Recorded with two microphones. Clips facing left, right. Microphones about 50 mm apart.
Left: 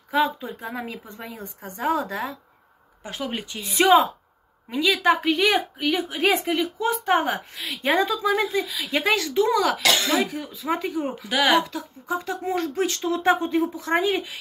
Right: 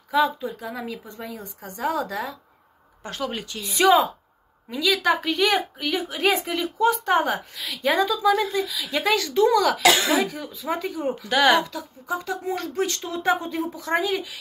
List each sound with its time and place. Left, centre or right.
0.1 s speech: left
1.0 s speech: left
3.0 s a woman's voice: centre
9.8 s speech: centre
10.2 s a woman's voice: left
11.2 s speech: centre
11.5 s speech: left